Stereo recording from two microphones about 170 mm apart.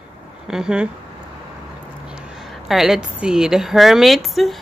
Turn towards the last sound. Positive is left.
turn(degrees=0)  # may be behind; listen again after turning